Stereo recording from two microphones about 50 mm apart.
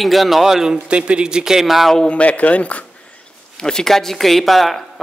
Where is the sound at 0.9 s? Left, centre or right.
Right; by 1.9 s centre.